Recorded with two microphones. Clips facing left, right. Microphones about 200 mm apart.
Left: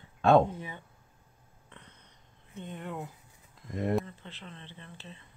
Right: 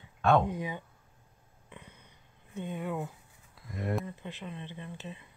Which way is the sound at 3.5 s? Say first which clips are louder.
Left 4 dB; 10° right (ahead or behind).